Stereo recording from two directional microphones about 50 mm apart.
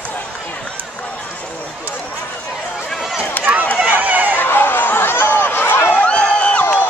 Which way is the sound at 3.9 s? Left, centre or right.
Right.